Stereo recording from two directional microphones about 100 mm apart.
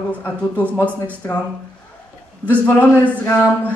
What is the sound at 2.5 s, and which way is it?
Speech, 15° left (ahead or behind).